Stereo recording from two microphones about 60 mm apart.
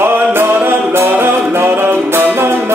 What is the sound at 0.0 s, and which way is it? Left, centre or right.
Music, right.